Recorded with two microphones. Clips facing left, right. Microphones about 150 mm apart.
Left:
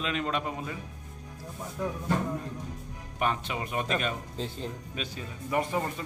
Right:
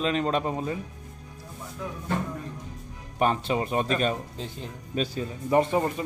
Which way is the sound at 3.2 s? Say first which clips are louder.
Right 6 dB; 35° right (ahead or behind).